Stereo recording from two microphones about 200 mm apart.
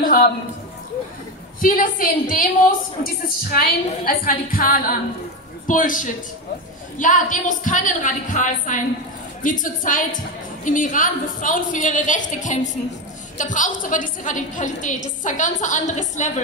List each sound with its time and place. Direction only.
0.0 s a sound: 45° left (ahead or behind)
1.6 s a woman's voice: 45° left (ahead or behind)
3.5 s a woman's voice: 45° left (ahead or behind)